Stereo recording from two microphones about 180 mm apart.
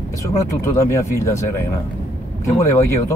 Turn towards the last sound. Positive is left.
turn(degrees=15)  # may be behind; listen again after turning